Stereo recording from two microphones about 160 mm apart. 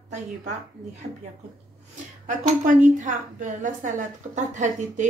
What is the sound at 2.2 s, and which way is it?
Speech, 50° right (ahead or behind).